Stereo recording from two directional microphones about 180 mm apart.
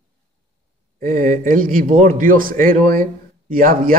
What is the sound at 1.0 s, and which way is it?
A man's voice, 45° right (ahead or behind).